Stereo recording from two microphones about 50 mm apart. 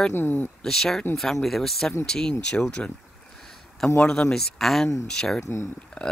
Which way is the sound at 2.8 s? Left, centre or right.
Left.